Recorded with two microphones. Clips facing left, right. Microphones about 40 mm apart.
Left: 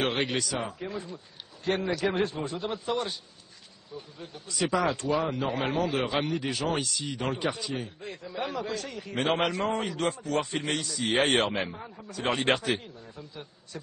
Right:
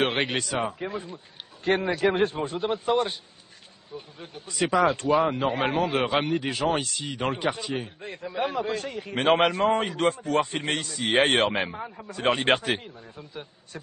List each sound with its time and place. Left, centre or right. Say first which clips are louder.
0.0 s speech: right 3 dB; right
4.2 s speech: right 3 dB; right
6.2 s speech: right 4 dB; right
6.8 s speech: right 1 dB; right
7.1 s speech: right 3 dB; centre
7.4 s speech: right 3 dB; right
11.1 s speech: right 3 dB; centre
11.4 s speech: right 4 dB; right